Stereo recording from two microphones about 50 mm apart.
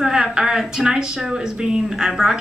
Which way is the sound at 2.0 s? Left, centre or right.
Centre.